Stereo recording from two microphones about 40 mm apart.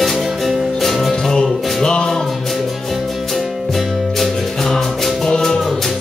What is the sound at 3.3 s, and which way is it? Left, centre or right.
Music, centre.